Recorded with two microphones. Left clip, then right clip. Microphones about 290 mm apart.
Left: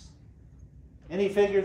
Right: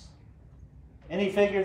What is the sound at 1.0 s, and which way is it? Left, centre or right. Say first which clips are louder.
Speech: even; centre.